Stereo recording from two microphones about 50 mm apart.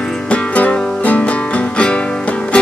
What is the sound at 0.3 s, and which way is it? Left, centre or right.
Music, left.